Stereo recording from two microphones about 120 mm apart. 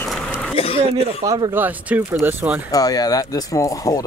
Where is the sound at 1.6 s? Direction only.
15° right (ahead or behind).